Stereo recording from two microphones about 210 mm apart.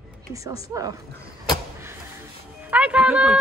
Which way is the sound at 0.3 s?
15° right (ahead or behind).